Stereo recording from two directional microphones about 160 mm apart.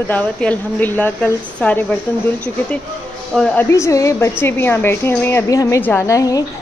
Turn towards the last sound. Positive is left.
turn(degrees=20)  # may be behind; listen again after turning